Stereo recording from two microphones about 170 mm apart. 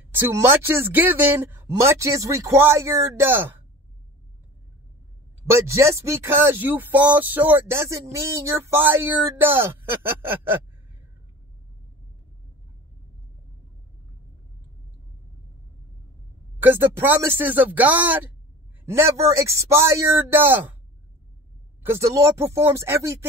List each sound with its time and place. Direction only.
0.2 s speech: 15° right (ahead or behind)
5.5 s speech: 15° right (ahead or behind)
16.5 s speech: 10° right (ahead or behind)
21.8 s speech: 15° right (ahead or behind)